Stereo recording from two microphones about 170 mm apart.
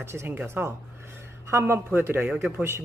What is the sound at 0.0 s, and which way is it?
Speech, 15° right (ahead or behind).